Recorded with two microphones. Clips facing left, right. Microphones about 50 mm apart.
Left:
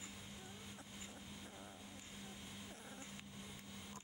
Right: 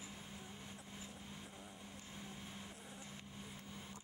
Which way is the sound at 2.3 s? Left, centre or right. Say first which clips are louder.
Right 2 dB; centre.